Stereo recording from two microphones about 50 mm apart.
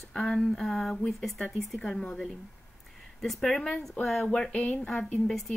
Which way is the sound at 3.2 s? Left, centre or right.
Centre.